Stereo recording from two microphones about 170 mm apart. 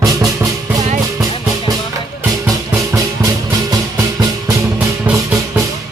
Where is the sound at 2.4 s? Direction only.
20° right (ahead or behind).